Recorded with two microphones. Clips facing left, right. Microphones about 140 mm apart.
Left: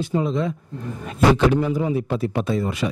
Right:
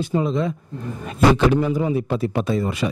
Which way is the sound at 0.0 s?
15° right (ahead or behind).